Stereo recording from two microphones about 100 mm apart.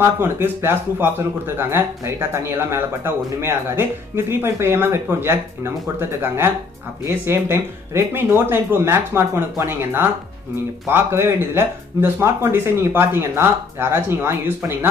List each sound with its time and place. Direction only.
0.0 s speech: 25° right (ahead or behind)